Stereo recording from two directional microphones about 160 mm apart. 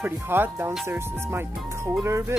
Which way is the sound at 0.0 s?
15° right (ahead or behind).